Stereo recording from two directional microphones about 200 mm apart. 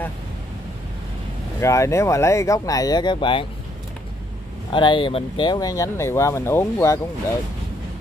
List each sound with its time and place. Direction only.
1.6 s speech: 15° left (ahead or behind)
4.7 s speech: 25° left (ahead or behind)